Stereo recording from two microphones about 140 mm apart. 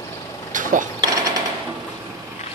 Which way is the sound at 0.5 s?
70° right (ahead or behind).